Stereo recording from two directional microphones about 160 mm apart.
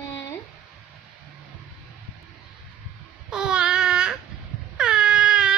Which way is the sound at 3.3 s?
5° right (ahead or behind).